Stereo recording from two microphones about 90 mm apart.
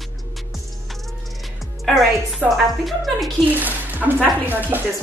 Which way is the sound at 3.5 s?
20° right (ahead or behind).